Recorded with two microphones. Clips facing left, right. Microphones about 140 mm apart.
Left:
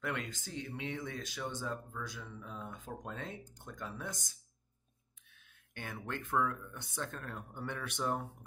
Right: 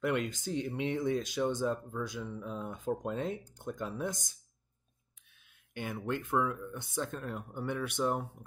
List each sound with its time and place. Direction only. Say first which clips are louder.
0.0 s speech: right 8 dB; 15° right (ahead or behind)
5.8 s speech: right 7 dB; 10° right (ahead or behind)